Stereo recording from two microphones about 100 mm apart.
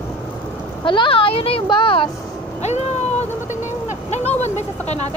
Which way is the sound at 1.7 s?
60° left (ahead or behind).